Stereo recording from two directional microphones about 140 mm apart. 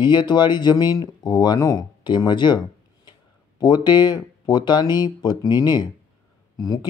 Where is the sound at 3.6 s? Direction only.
30° left (ahead or behind).